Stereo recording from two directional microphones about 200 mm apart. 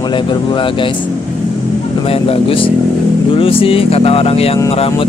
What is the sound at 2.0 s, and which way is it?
Speech, 30° left (ahead or behind).